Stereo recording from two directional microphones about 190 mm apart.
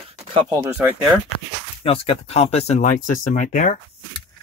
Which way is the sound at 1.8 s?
30° left (ahead or behind).